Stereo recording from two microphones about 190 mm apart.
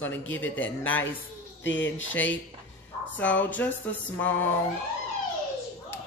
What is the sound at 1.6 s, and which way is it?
Speech, 75° left (ahead or behind).